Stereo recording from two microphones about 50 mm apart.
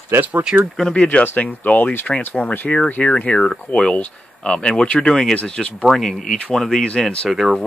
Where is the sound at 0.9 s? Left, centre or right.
Left.